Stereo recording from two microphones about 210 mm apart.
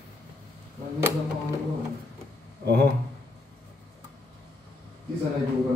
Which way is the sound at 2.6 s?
45° right (ahead or behind).